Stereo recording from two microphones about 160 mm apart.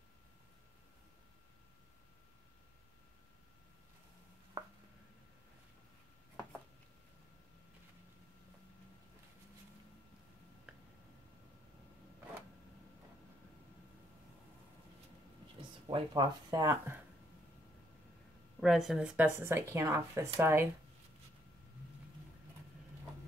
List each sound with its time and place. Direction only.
15.9 s speech: 30° right (ahead or behind)
18.6 s speech: centre (ahead or behind)